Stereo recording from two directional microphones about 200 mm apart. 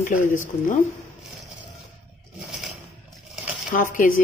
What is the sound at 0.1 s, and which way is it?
Speech, 40° left (ahead or behind).